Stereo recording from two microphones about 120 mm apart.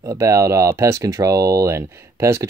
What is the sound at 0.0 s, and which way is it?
Speech, 25° right (ahead or behind).